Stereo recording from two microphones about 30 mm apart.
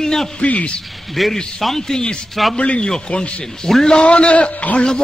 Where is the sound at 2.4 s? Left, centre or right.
Centre.